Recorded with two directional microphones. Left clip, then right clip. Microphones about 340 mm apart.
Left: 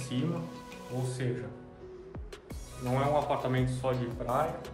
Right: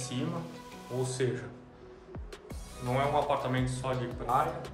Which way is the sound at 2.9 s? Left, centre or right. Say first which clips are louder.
Even; centre.